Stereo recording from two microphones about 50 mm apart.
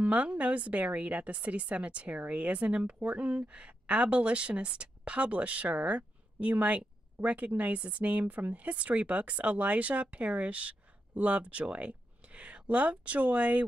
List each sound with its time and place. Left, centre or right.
0.0 s speech: right